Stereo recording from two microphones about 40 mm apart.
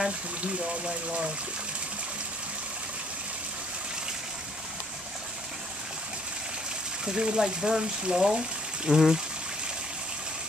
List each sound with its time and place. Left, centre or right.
0.6 s speech: right
7.1 s speech: centre